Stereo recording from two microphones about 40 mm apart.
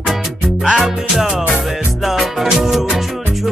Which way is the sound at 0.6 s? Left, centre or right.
Right.